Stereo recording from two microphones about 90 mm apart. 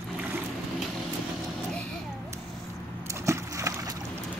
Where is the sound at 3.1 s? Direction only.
35° right (ahead or behind).